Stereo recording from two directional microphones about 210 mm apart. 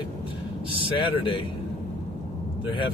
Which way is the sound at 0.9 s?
25° left (ahead or behind).